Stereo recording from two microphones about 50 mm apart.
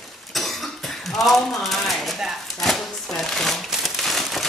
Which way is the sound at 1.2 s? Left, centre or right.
Centre.